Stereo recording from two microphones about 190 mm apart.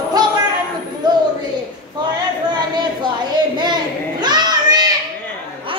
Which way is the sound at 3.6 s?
20° right (ahead or behind).